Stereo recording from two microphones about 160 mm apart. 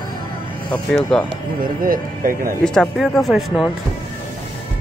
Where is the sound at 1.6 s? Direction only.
60° right (ahead or behind).